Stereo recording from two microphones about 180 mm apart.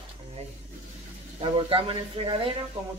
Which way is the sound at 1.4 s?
30° right (ahead or behind).